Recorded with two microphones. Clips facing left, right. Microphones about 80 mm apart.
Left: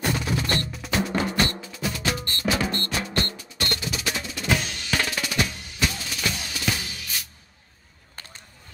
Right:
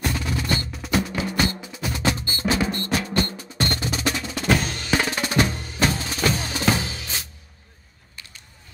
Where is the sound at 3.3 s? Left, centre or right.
Right.